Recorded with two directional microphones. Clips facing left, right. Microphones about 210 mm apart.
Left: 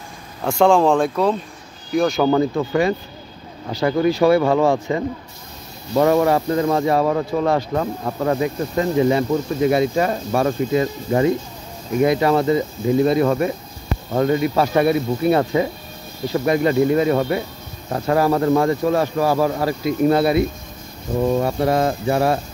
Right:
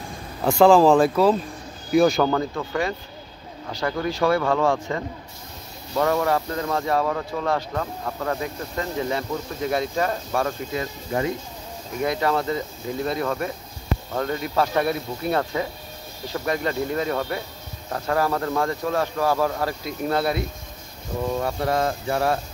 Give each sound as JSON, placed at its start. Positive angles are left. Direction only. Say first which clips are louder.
{"t": 0.4, "sound": "speech", "louder": "even", "side_deg": 0}
{"t": 2.2, "sound": "speech", "louder": "left 6 dB", "side_deg": 15}
{"t": 10.8, "sound": "speech", "louder": "left 4 dB", "side_deg": 30}
{"t": 12.0, "sound": "speech", "louder": "left 7 dB", "side_deg": 10}